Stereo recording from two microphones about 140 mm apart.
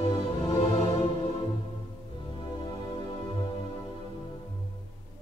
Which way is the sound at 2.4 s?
40° left (ahead or behind).